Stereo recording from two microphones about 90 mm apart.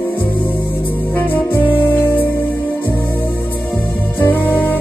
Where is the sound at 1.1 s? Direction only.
20° left (ahead or behind).